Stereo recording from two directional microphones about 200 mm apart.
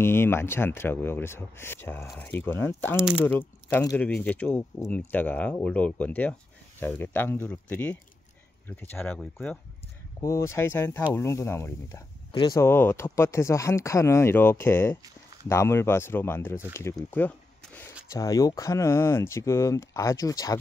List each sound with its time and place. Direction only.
0.0 s speech: 10° left (ahead or behind)